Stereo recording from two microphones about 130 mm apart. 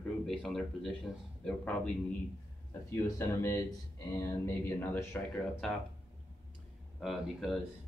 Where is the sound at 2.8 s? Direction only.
20° left (ahead or behind).